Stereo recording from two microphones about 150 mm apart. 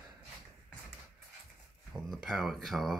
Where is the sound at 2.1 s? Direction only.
Centre (ahead or behind).